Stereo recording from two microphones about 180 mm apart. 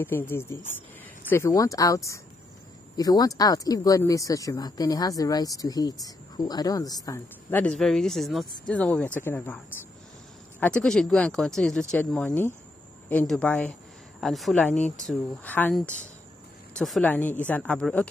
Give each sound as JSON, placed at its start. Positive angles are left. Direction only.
{"t": 0.0, "sound": "speech", "side_deg": 10}
{"t": 7.4, "sound": "speech", "side_deg": 10}
{"t": 10.6, "sound": "speech", "side_deg": 5}